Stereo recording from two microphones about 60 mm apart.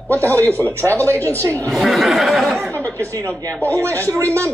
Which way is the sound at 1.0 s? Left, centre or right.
Right.